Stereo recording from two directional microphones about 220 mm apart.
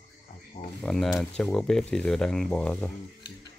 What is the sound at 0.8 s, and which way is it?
Speech, centre (ahead or behind).